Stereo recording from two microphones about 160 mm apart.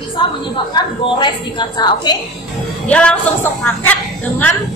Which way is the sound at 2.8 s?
5° left (ahead or behind).